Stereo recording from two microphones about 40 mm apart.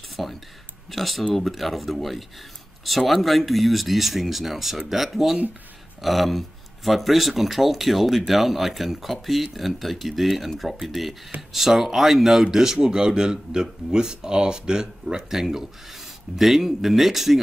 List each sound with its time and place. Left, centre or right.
0.1 s a sound: centre
0.9 s speech: centre
15.2 s speech: centre